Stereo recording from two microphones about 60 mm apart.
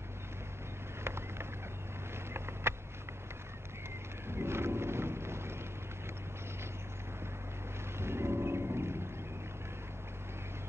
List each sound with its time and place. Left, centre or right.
1.0 s vehicle: right
2.3 s a sound: right
4.3 s boat: right
8.0 s music: right